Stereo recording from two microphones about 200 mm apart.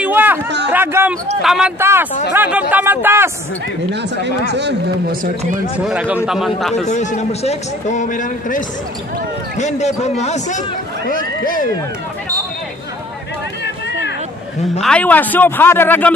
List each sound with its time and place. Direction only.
0.0 s a sound: 10° right (ahead or behind)
0.7 s a man's voice: 10° right (ahead or behind)
3.9 s speech: 60° right (ahead or behind)
5.9 s a man's voice: 5° right (ahead or behind)
6.9 s a man's voice: 35° left (ahead or behind)
14.8 s speech: 5° left (ahead or behind)